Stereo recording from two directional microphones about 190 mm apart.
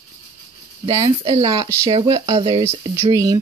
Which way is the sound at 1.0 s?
25° right (ahead or behind).